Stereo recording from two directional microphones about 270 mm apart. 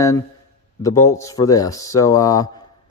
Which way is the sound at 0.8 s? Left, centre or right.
Centre.